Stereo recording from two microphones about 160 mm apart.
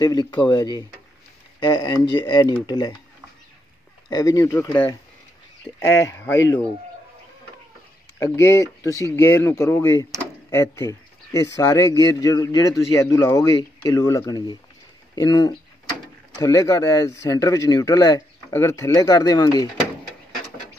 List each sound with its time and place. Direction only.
0.0 s speech: 25° left (ahead or behind)
4.1 s speech: 20° left (ahead or behind)
5.9 s speech: 20° left (ahead or behind)
8.2 s speech: 20° left (ahead or behind)